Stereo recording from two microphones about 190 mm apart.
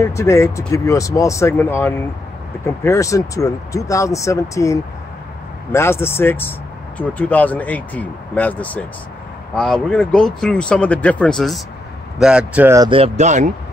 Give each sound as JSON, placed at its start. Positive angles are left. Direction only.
{"t": 0.0, "sound": "speech", "side_deg": 15}
{"t": 12.7, "sound": "speech", "side_deg": -20}
{"t": 13.0, "sound": "speech", "side_deg": -35}